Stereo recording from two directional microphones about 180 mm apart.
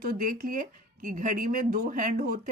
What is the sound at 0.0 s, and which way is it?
Speech, 50° right (ahead or behind).